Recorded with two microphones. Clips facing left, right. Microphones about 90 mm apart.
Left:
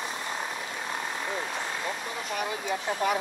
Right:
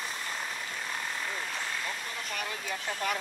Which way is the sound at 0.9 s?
20° left (ahead or behind).